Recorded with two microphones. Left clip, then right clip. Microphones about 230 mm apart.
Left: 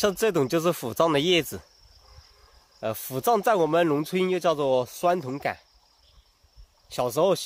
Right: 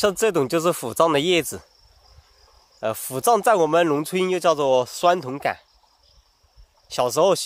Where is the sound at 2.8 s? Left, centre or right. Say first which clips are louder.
Right 5 dB; right.